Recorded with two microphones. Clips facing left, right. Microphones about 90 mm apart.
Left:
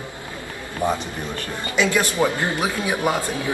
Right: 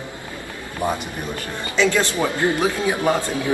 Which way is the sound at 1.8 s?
15° left (ahead or behind).